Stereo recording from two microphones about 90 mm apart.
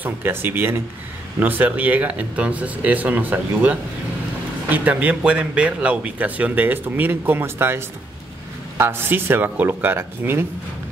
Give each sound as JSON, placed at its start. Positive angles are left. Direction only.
{"t": 0.0, "sound": "speech", "side_deg": -25}